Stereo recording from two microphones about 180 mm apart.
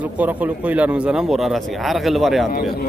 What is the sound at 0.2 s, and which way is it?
Speech, 10° right (ahead or behind).